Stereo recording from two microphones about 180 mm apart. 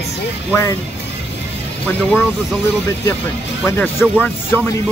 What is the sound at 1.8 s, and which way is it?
Speech, 5° left (ahead or behind).